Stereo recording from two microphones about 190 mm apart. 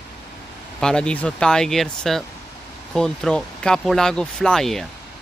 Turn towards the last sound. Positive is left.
turn(degrees=0)  # may be behind; listen again after turning